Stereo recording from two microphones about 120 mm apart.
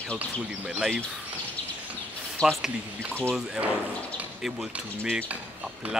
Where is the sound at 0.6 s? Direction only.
5° right (ahead or behind).